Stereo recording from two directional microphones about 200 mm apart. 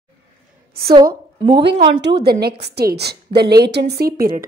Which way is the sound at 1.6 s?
60° right (ahead or behind).